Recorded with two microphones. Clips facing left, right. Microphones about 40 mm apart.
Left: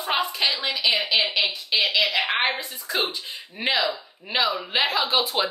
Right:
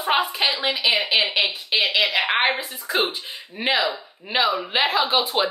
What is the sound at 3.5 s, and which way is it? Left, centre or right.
Speech, centre.